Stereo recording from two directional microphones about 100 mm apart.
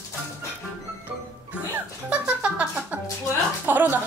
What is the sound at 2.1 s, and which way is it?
Music, 10° right (ahead or behind).